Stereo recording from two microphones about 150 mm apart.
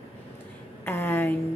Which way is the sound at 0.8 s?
15° left (ahead or behind).